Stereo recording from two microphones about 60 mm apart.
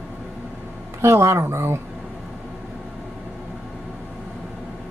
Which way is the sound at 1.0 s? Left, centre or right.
Right.